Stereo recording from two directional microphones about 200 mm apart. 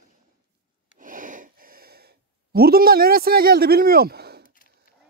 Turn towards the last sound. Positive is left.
turn(degrees=-55)  # may be behind; listen again after turning